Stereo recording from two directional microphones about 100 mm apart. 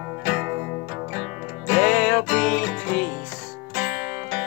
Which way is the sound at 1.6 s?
5° left (ahead or behind).